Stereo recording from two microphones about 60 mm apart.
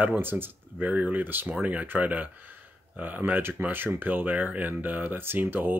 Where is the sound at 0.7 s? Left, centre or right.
Right.